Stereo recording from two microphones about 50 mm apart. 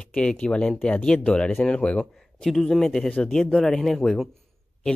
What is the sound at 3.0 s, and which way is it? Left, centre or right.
Speech, left.